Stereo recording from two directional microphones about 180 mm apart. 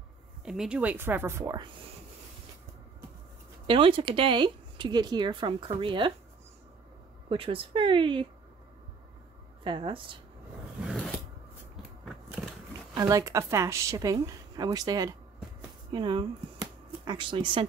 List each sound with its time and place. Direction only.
0.5 s a woman's voice: 5° right (ahead or behind); by 1.7 s 20° right (ahead or behind)
3.6 s speech: 30° right (ahead or behind)
7.2 s speech: 30° right (ahead or behind)
9.6 s speech: 25° right (ahead or behind)
10.8 s a sound: 5° right (ahead or behind)
12.9 s speech: 20° right (ahead or behind)